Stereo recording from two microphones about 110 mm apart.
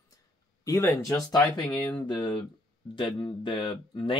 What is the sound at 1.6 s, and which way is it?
Speech, 45° left (ahead or behind).